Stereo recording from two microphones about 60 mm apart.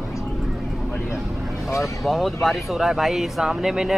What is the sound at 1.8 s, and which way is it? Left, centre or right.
Speech, centre.